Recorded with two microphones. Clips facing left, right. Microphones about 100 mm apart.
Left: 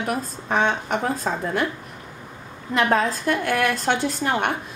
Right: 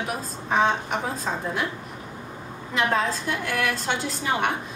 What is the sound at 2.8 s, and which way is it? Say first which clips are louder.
A woman's voice: left 3 dB; 50° left (ahead or behind).